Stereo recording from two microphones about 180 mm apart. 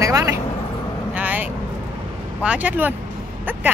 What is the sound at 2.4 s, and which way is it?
Speech, 5° right (ahead or behind).